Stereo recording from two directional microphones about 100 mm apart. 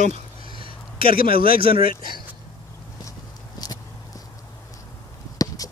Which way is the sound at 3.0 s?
40° left (ahead or behind).